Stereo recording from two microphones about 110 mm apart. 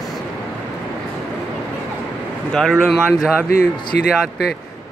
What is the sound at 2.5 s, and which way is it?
Speech, 5° left (ahead or behind).